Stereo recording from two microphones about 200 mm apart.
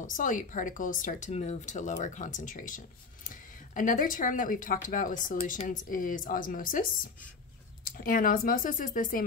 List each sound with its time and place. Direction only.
0.0 s a woman's voice: 40° left (ahead or behind)